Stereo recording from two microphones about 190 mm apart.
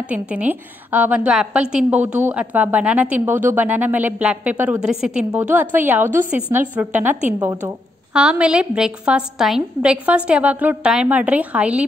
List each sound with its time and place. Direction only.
0.0 s a woman's voice: 5° right (ahead or behind)